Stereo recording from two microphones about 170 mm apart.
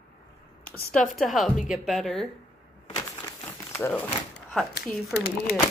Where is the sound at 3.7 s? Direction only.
10° left (ahead or behind).